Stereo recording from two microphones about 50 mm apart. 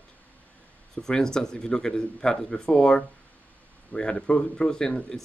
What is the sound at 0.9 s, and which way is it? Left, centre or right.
Speech, centre.